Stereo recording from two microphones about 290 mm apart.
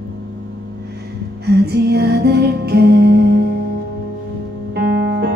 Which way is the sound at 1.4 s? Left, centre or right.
Right.